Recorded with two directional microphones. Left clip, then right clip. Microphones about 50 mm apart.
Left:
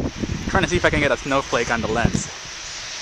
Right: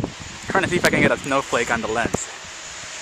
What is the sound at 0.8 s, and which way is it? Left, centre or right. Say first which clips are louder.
Speech: right 1 dB; left.